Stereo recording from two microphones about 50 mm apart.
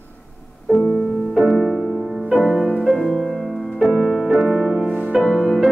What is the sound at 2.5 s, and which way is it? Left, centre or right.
Music, right.